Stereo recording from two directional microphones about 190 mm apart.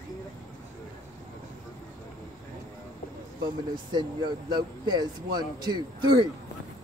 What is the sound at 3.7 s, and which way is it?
Speech, 25° right (ahead or behind).